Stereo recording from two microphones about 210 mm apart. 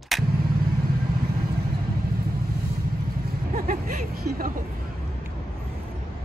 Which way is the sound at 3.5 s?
40° right (ahead or behind).